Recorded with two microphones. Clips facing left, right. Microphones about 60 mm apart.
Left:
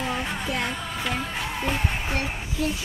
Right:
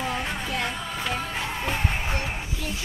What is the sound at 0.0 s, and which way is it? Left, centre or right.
Music, centre.